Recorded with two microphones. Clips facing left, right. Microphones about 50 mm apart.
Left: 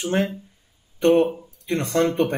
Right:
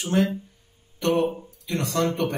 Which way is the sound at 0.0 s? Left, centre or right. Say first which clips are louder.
Even; left.